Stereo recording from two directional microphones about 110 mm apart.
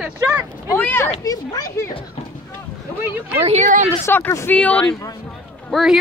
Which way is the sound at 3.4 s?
90° right.